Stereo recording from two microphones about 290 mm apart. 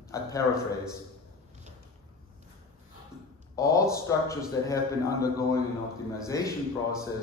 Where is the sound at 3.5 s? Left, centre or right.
Centre.